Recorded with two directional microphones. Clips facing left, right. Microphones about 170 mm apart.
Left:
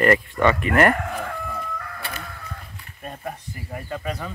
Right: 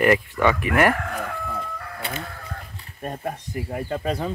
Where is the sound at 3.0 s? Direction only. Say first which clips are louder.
Right 4 dB; 45° right (ahead or behind).